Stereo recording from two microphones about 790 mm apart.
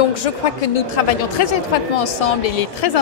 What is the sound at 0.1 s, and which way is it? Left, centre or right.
A woman's voice, left.